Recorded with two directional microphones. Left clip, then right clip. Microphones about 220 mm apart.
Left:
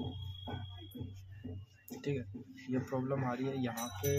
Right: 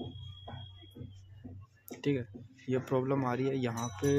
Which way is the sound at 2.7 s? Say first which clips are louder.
Right 6 dB; 35° right (ahead or behind).